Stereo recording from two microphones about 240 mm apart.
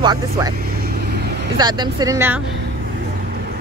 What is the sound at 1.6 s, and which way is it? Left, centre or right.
Speech, centre.